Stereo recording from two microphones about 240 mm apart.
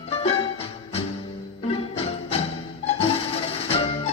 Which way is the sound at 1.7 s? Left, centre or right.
Left.